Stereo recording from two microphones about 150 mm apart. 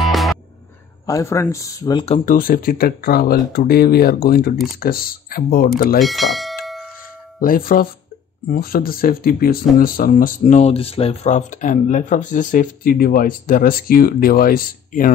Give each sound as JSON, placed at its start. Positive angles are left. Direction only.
{"t": 0.0, "sound": "music", "side_deg": 0}
{"t": 1.0, "sound": "speech", "side_deg": 20}
{"t": 2.2, "sound": "speech", "side_deg": 65}
{"t": 5.9, "sound": "bell", "side_deg": 0}
{"t": 7.3, "sound": "speech", "side_deg": 70}
{"t": 10.4, "sound": "speech", "side_deg": 45}